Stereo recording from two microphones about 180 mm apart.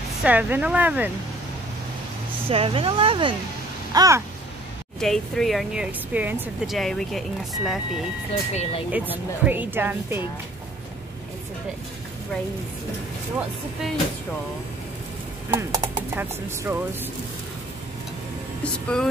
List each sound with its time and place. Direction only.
0.2 s speech: 10° right (ahead or behind)
2.5 s speech: 30° right (ahead or behind)
3.9 s a sound: 20° right (ahead or behind)
5.0 s speech: centre (ahead or behind)
6.8 s speech: centre (ahead or behind)
8.3 s speech: 30° left (ahead or behind)
8.9 s speech: 10° right (ahead or behind)
15.5 s speech: 15° right (ahead or behind)
18.6 s speech: 5° left (ahead or behind)